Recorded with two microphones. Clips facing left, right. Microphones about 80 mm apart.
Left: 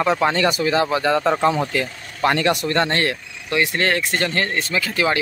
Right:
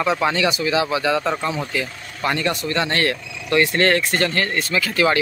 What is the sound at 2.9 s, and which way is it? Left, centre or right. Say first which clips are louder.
Speech: even; left.